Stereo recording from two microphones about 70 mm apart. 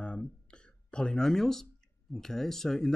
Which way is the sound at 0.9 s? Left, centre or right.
Centre.